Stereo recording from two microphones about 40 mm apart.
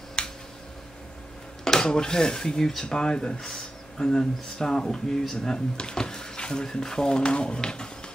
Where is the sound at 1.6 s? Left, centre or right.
Centre.